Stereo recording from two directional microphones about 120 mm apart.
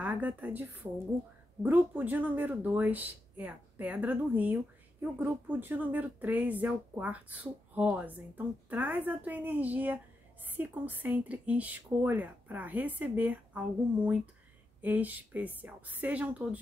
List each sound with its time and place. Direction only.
0.0 s a woman's voice: 15° right (ahead or behind)